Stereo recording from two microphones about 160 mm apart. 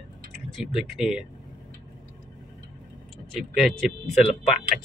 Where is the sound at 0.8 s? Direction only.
Centre (ahead or behind).